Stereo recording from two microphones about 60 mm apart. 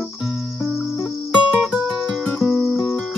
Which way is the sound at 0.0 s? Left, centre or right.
Centre.